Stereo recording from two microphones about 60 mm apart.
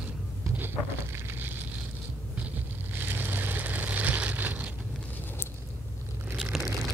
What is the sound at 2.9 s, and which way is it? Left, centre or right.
Vehicle, right.